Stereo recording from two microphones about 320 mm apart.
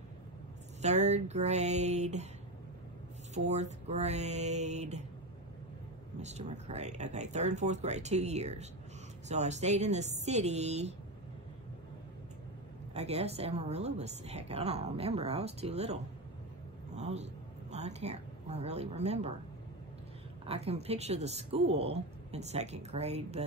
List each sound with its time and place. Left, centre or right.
0.8 s a woman's voice: right
3.3 s a woman's voice: right
6.2 s a woman's voice: right
12.9 s a woman's voice: centre
20.4 s a woman's voice: centre